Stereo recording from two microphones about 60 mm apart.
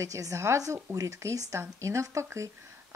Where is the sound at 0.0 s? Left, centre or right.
Right.